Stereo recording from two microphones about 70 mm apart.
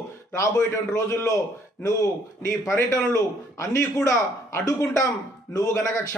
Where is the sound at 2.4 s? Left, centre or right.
Left.